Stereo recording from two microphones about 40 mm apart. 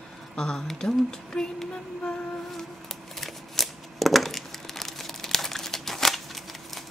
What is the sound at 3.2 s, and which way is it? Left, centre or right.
Crumpling, centre.